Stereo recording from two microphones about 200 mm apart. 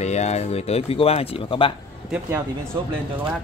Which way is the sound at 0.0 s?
35° left (ahead or behind).